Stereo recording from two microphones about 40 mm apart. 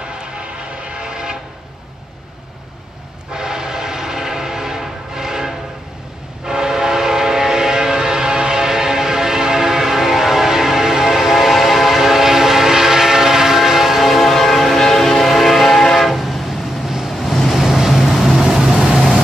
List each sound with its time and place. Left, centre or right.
0.4 s train: right
3.3 s train: centre
17.2 s vehicle: centre